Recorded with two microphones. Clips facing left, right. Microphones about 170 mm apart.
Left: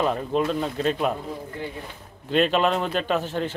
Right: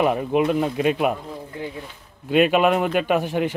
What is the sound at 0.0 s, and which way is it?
A man's voice, 15° right (ahead or behind).